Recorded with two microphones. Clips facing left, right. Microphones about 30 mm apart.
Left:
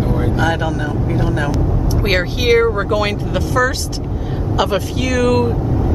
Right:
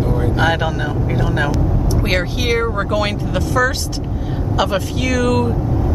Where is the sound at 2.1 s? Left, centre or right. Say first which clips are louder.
Left 5 dB; centre.